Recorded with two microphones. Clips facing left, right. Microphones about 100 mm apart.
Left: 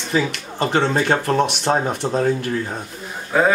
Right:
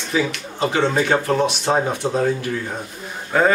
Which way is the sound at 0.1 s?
55° left (ahead or behind).